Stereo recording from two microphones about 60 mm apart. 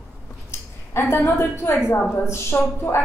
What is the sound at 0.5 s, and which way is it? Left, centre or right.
A woman's voice, left.